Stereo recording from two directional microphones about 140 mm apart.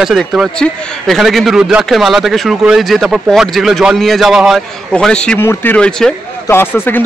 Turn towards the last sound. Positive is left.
turn(degrees=15)  # may be behind; listen again after turning